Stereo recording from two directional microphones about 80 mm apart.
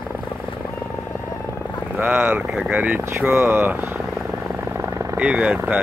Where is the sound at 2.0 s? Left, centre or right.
Right.